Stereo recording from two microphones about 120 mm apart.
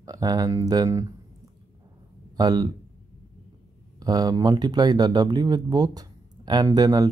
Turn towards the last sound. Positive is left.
turn(degrees=-35)  # may be behind; listen again after turning